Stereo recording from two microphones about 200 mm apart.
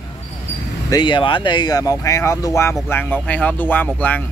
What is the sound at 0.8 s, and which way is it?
Speech, 20° left (ahead or behind).